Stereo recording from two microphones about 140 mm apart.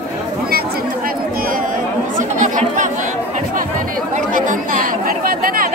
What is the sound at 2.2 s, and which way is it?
Chatter, 65° right (ahead or behind).